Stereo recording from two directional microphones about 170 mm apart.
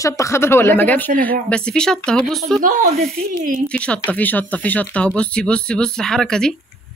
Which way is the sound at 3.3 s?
55° right (ahead or behind).